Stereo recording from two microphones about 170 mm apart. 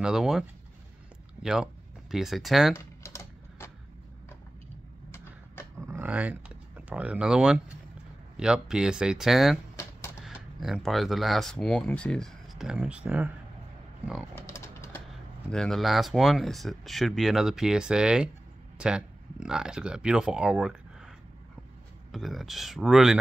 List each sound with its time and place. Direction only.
0.0 s speech: 5° right (ahead or behind)
2.7 s typing: 15° left (ahead or behind)
5.8 s speech: 15° right (ahead or behind)
14.3 s a sound: 15° left (ahead or behind)
15.5 s speech: centre (ahead or behind)
22.1 s speech: centre (ahead or behind)